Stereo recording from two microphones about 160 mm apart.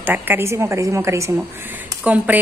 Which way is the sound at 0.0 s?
10° right (ahead or behind).